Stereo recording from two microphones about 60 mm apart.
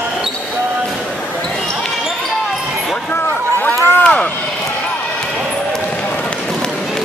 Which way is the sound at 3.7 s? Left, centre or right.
Left.